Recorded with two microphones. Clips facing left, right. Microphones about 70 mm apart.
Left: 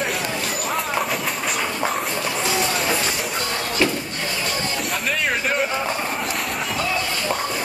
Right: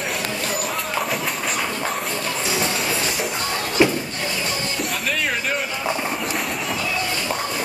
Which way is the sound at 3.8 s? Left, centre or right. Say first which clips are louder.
Right 4 dB; centre.